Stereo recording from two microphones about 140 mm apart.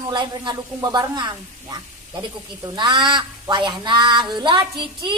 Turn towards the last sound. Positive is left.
turn(degrees=-35)  # may be behind; listen again after turning